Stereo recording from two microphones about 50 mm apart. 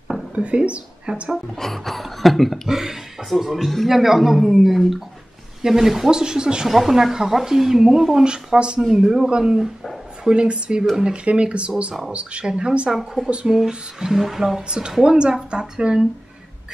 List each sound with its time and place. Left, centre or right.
0.3 s speech: right
1.6 s a sound: centre
2.7 s a man's voice: centre
12.9 s a man's voice: centre
14.7 s speech: centre